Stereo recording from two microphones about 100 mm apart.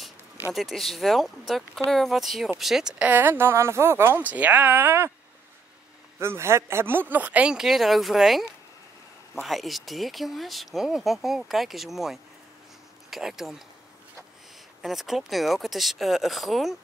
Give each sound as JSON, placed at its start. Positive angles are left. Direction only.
{"t": 0.6, "sound": "speech", "side_deg": 0}
{"t": 3.0, "sound": "speech", "side_deg": -20}
{"t": 6.1, "sound": "speech", "side_deg": -25}
{"t": 14.8, "sound": "speech", "side_deg": 0}